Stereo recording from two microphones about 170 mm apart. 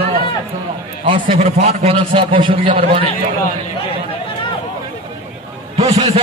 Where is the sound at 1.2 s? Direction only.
45° right (ahead or behind).